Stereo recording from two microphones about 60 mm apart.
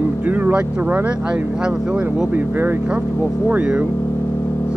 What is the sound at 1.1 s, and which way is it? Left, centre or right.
Speech, centre.